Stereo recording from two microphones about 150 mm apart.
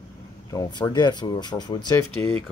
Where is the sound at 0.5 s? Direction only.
25° left (ahead or behind).